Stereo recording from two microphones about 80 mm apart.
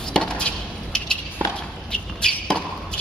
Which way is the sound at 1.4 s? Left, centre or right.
Right.